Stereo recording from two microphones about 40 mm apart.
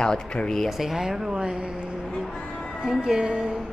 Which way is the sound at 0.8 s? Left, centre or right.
Centre.